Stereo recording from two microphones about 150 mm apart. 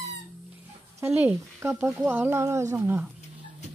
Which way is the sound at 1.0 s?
15° right (ahead or behind).